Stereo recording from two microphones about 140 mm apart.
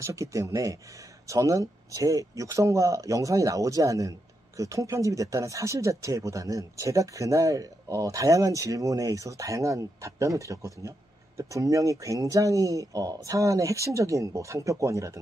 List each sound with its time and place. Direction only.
0.0 s speech: 20° right (ahead or behind)